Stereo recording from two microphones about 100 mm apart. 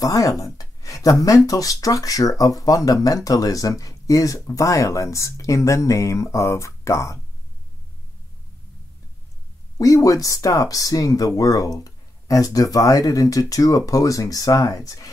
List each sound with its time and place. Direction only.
0.0 s speech: 35° left (ahead or behind)
0.6 s a sound: 35° left (ahead or behind)
1.2 s speech: 35° left (ahead or behind)
9.8 s speech: 35° left (ahead or behind)